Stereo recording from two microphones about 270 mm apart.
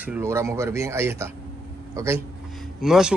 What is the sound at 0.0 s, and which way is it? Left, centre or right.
A man's voice, centre.